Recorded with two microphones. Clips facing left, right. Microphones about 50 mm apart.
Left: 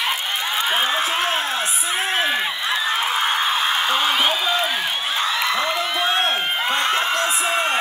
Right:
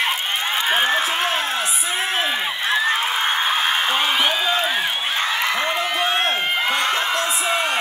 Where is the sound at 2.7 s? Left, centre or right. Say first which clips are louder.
Right 2 dB; right.